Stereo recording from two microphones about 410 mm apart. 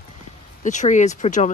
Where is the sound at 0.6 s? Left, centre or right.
Centre.